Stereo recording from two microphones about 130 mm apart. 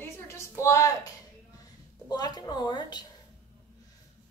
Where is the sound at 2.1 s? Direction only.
30° left (ahead or behind).